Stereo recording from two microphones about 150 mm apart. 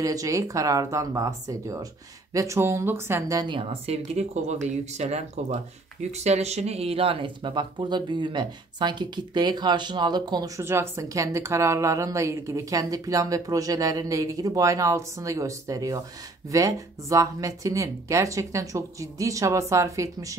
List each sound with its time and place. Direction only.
0.0 s a woman's voice: 25° right (ahead or behind)
10.6 s a woman's voice: 15° right (ahead or behind)